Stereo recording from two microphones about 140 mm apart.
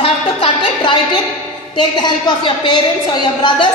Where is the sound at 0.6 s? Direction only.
35° left (ahead or behind).